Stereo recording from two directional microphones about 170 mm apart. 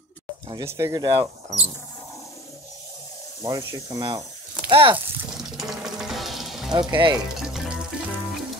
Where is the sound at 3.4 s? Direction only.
20° right (ahead or behind).